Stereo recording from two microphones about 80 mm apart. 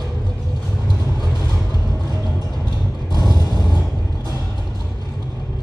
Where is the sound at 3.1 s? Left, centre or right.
Left.